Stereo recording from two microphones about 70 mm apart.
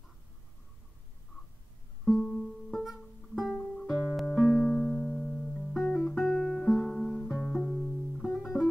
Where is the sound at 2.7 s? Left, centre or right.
Centre.